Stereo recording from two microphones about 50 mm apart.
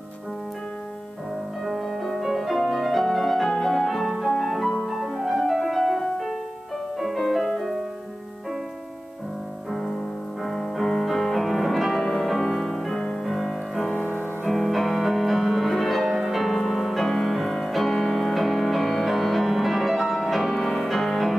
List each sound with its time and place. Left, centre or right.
1.6 s music: centre
9.7 s music: centre
13.8 s music: left
14.4 s music: centre